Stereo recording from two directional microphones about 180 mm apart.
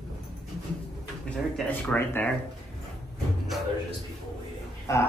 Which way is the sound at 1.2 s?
5° left (ahead or behind).